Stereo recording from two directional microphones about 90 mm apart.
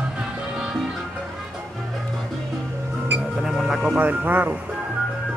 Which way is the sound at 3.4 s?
5° right (ahead or behind).